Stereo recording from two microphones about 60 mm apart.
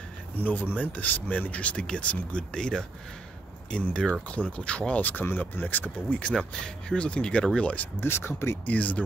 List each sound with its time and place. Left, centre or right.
0.4 s speech: left
8.0 s speech: left
8.6 s speech: left